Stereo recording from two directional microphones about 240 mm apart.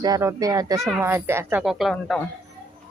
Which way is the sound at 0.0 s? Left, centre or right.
Centre.